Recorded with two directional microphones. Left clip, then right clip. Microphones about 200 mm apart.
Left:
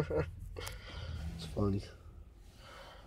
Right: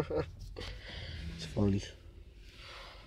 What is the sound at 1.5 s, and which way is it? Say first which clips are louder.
Speech: right 2 dB; 20° right (ahead or behind).